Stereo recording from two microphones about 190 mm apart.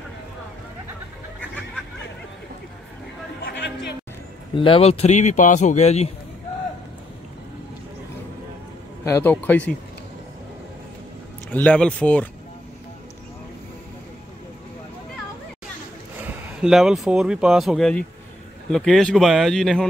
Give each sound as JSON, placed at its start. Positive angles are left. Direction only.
{"t": 4.6, "sound": "a man's voice", "side_deg": 30}
{"t": 9.0, "sound": "speech", "side_deg": 10}
{"t": 11.5, "sound": "speech", "side_deg": 5}
{"t": 16.6, "sound": "speech", "side_deg": 0}